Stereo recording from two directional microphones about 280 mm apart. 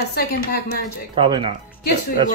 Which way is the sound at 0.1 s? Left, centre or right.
Left.